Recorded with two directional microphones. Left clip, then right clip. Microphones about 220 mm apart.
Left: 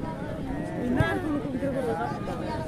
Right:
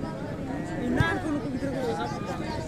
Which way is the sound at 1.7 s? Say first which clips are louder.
Even; 40° left (ahead or behind).